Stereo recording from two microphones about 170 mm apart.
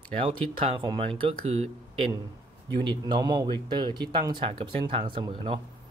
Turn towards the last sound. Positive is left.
turn(degrees=-30)  # may be behind; listen again after turning